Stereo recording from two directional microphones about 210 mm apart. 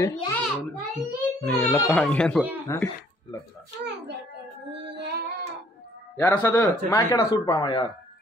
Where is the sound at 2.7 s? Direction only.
15° left (ahead or behind).